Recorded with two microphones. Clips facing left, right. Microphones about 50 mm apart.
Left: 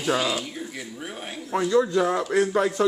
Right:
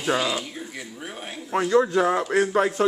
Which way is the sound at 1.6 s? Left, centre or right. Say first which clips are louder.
Right 1 dB; right.